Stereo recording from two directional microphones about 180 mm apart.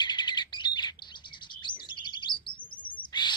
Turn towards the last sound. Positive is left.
turn(degrees=25)  # may be behind; listen again after turning